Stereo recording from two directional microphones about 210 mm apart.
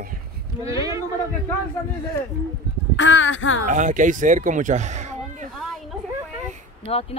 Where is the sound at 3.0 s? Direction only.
65° left (ahead or behind).